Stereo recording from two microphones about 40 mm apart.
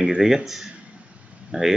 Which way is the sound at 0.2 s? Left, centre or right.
Centre.